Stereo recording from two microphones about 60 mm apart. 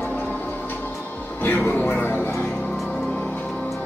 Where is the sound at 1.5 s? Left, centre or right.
Left.